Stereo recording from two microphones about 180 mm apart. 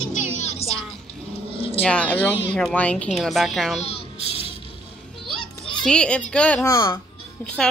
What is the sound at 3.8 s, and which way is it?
Music, 35° left (ahead or behind).